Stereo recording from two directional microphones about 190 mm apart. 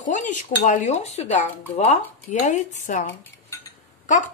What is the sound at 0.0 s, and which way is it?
A woman's voice, 40° left (ahead or behind).